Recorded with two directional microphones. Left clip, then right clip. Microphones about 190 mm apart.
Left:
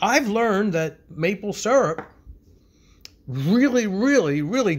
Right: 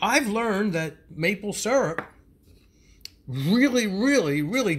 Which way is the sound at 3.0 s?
5° left (ahead or behind).